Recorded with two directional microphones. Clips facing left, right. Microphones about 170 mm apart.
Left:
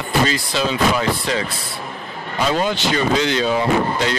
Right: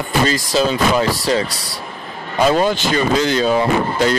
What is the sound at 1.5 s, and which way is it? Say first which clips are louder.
Speech: even; 80° right.